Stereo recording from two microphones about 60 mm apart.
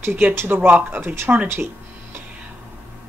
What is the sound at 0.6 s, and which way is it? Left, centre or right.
Speech, right.